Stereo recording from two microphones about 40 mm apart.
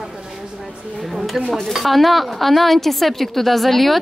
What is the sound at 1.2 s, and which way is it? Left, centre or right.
Speech, centre.